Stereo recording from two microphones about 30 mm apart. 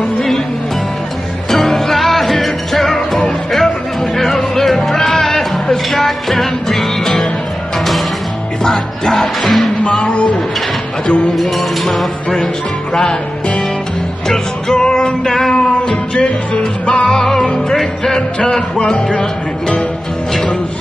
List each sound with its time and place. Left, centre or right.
1.5 s music: centre
8.6 s music: centre
9.8 s a sound: left
11.5 s music: centre
12.9 s music: left
14.7 s music: left
17.2 s music: centre
18.1 s music: left